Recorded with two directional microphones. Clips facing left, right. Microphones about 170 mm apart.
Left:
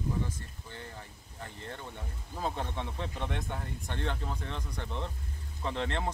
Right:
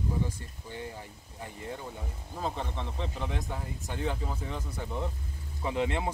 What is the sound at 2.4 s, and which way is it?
A man's voice, centre (ahead or behind).